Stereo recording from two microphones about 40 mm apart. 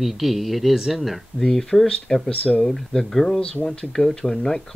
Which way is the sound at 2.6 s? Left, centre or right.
Centre.